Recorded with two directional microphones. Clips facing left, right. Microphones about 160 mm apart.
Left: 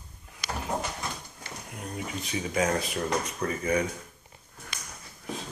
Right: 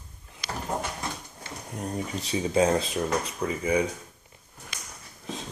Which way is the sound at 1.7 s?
35° right (ahead or behind).